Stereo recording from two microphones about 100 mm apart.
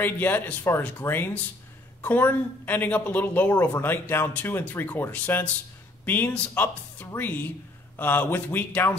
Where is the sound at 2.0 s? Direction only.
20° left (ahead or behind).